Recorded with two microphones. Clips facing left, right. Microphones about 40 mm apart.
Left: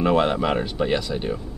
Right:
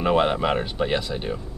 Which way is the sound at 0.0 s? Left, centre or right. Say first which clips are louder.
Left 1 dB; centre.